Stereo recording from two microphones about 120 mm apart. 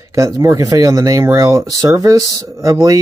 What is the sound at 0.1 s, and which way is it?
Speech, 25° right (ahead or behind).